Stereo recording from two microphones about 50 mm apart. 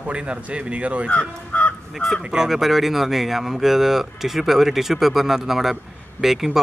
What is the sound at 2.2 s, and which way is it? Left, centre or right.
Speech, centre.